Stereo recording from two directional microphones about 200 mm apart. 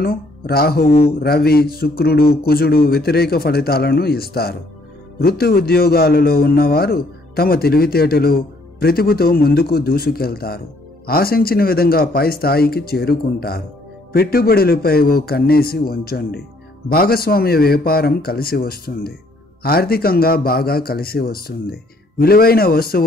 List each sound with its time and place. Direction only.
0.0 s a man's voice: 50° left (ahead or behind)